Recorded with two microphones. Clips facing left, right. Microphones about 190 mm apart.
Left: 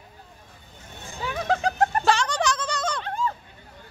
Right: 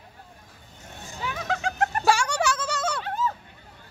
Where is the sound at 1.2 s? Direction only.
40° left (ahead or behind).